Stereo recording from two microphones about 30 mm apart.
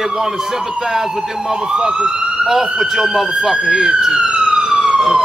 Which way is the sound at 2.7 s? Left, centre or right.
Centre.